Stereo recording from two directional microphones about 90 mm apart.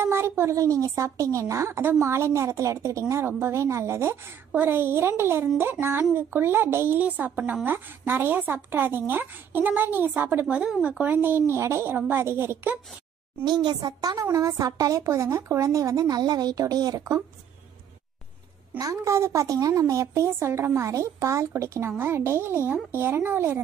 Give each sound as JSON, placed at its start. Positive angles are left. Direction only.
{"t": 0.0, "sound": "speech", "side_deg": -30}
{"t": 13.4, "sound": "speech", "side_deg": -60}
{"t": 18.8, "sound": "speech", "side_deg": -35}